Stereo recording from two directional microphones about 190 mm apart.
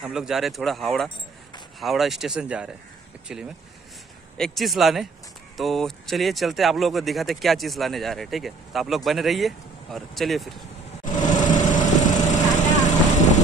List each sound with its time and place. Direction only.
0.0 s speech: 5° right (ahead or behind)
11.2 s light engine: 40° left (ahead or behind)
12.3 s vehicle: 40° left (ahead or behind)